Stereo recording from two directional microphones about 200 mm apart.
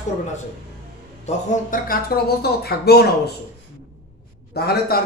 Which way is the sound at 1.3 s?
40° left (ahead or behind).